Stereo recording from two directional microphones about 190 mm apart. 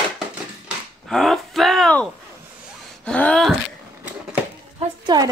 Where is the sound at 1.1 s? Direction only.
Centre (ahead or behind).